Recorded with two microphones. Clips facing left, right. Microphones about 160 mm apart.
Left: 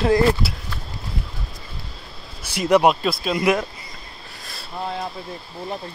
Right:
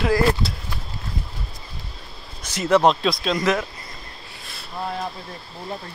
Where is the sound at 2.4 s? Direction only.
15° left (ahead or behind).